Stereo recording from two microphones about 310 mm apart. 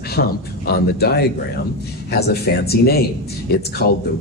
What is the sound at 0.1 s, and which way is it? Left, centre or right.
Speech, left.